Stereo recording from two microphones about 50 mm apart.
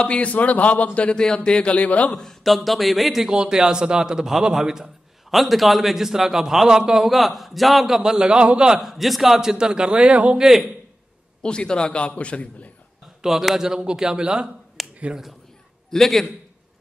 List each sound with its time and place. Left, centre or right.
0.0 s a man's voice: left
1.7 s a man's voice: left
2.1 s a man's voice: centre
7.1 s a man's voice: centre
8.0 s a man's voice: centre
8.7 s a man's voice: centre; by 10.4 s right
10.4 s a man's voice: centre
11.4 s a man's voice: centre
13.2 s a man's voice: centre
14.8 s finger snapping: centre
15.9 s a man's voice: centre